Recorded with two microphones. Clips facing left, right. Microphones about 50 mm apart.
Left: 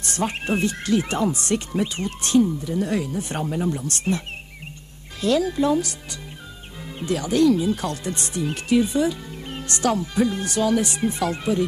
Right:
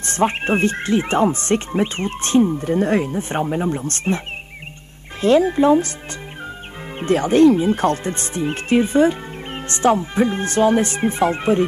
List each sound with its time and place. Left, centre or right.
0.0 s speech: right
5.2 s speech: right
7.0 s speech: right